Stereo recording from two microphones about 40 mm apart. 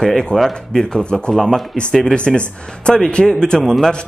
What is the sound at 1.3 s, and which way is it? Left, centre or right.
Speech, centre.